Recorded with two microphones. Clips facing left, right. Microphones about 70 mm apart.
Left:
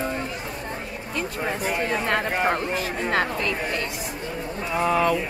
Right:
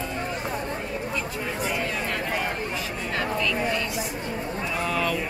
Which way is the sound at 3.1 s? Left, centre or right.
Left.